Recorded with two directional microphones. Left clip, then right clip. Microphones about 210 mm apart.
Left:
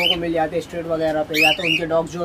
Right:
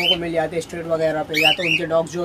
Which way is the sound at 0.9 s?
30° right (ahead or behind).